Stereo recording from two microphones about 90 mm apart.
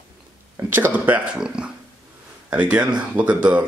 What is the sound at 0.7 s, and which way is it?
Speech, 20° right (ahead or behind).